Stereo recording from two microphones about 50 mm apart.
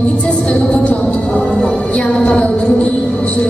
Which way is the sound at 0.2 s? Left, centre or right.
Left.